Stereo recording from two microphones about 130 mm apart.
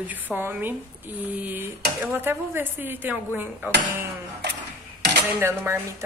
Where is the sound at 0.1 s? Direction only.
15° right (ahead or behind).